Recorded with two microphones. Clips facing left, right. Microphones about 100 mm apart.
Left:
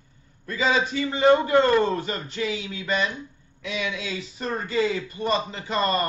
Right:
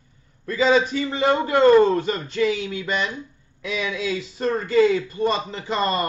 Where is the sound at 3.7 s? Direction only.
40° right (ahead or behind).